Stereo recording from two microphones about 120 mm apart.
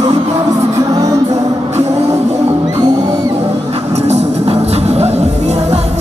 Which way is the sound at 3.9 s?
65° right (ahead or behind).